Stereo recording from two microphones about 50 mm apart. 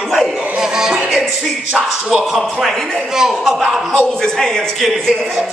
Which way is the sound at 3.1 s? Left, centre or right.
Centre.